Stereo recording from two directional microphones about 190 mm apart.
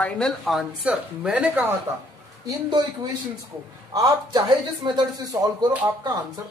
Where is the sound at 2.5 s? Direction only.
20° right (ahead or behind).